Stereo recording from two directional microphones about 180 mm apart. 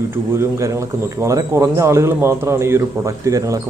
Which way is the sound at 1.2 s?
15° right (ahead or behind).